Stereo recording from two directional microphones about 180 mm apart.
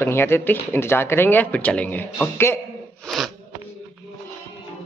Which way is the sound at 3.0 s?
Centre (ahead or behind).